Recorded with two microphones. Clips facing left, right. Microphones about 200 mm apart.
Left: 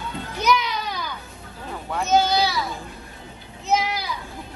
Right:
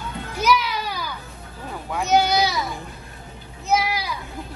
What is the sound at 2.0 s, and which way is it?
Speech, 15° right (ahead or behind).